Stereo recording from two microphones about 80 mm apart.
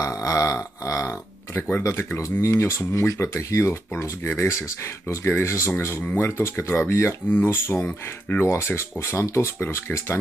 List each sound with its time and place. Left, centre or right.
0.0 s speech: left
1.8 s speech: left